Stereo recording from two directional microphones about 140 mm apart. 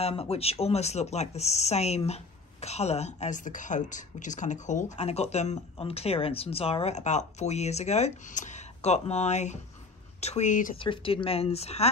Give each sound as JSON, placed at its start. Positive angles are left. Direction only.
{"t": 0.0, "sound": "speech", "side_deg": 45}
{"t": 10.8, "sound": "speech", "side_deg": 40}